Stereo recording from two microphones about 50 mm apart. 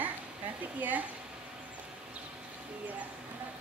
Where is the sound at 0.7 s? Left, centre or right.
Right.